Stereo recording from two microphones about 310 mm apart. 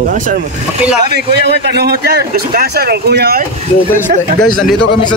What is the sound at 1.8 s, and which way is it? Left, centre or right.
A man's voice, right.